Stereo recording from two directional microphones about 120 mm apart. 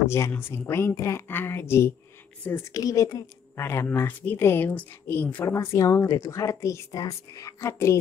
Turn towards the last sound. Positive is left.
turn(degrees=25)  # may be behind; listen again after turning